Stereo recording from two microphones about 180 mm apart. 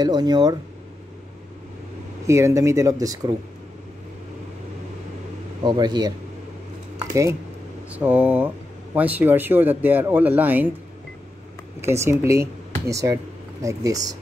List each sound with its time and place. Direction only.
0.0 s speech: 20° right (ahead or behind)
2.2 s speech: 15° right (ahead or behind)
5.6 s speech: 25° right (ahead or behind)
7.9 s speech: 10° right (ahead or behind)
11.8 s speech: 15° right (ahead or behind)